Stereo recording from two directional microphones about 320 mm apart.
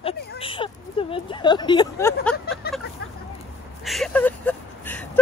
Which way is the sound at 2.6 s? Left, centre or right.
Left.